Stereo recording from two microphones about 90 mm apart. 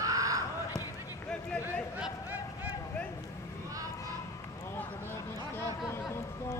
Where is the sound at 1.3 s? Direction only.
10° left (ahead or behind).